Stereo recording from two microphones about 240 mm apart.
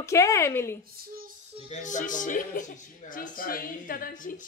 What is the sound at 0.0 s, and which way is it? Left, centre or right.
Speech, centre.